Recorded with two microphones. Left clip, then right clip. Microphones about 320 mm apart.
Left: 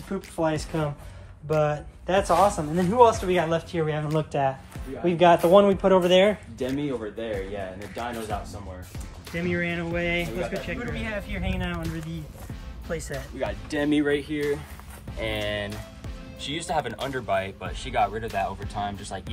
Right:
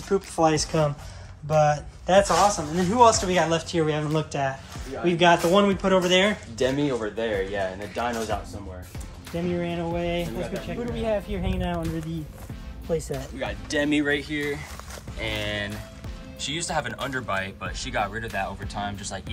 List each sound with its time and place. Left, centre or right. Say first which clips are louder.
0.4 s speech: right 4 dB; centre
6.6 s speech: right 7 dB; right
9.3 s speech: left 1 dB; centre